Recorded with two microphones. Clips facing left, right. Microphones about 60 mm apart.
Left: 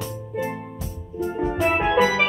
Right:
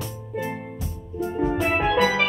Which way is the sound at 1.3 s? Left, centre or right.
Centre.